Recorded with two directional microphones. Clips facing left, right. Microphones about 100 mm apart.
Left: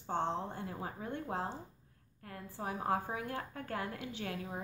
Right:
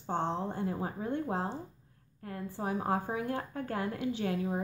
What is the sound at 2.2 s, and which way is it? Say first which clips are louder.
A woman's voice: right 6 dB; 25° right (ahead or behind).